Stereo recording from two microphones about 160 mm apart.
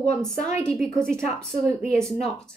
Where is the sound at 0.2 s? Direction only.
Centre (ahead or behind).